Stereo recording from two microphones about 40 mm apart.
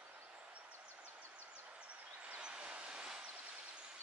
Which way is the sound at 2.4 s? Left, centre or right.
Right.